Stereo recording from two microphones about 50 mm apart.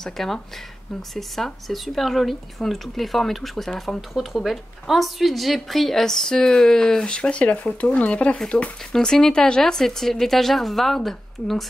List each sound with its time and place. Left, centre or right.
0.0 s a woman's voice: centre